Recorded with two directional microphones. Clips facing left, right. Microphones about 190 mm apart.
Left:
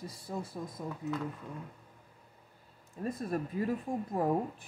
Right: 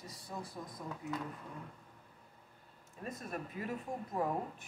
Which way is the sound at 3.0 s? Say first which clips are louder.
Left 8 dB; 35° left (ahead or behind).